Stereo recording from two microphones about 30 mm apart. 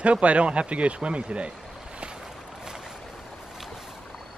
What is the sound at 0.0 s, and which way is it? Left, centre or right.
Speech, right.